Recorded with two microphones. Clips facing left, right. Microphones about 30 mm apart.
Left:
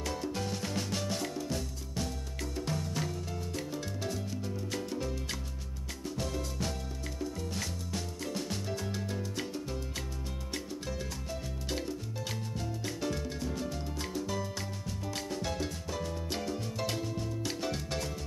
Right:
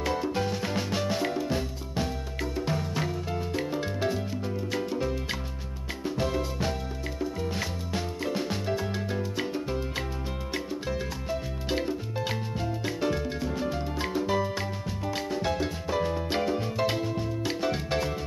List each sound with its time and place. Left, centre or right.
0.0 s music: right